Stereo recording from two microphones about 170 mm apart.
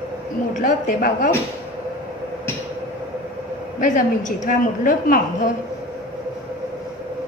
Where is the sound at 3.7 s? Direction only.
50° left (ahead or behind).